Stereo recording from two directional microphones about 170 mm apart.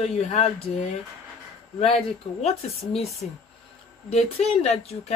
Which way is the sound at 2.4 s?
40° left (ahead or behind).